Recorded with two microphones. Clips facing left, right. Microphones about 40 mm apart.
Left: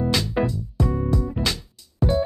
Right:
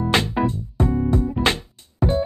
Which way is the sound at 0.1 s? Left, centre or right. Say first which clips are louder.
Right 3 dB; right.